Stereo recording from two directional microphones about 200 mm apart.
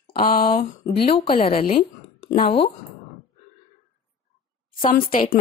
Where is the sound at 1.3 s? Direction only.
30° left (ahead or behind).